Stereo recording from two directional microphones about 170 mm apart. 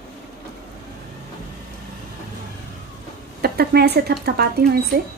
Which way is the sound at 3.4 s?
65° right (ahead or behind).